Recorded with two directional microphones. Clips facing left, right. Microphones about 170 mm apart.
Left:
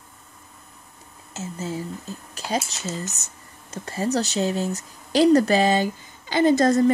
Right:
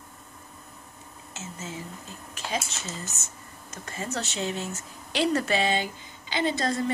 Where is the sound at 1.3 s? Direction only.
35° left (ahead or behind).